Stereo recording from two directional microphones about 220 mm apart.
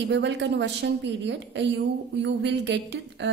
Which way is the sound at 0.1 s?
55° right (ahead or behind).